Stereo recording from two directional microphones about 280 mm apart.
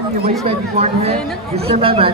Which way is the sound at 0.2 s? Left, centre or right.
Right.